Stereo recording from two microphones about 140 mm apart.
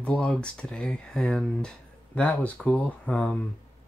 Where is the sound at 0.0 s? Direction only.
10° left (ahead or behind).